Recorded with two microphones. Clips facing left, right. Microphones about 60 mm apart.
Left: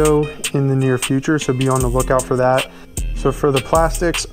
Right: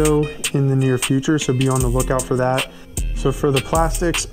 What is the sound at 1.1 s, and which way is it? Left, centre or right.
Speech, left.